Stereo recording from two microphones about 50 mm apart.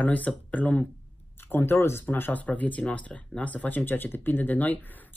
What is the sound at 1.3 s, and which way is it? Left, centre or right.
Speech, left.